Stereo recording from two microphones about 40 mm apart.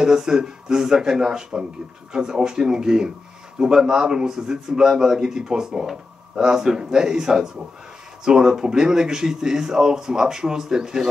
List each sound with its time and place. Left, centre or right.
0.0 s a man's voice: centre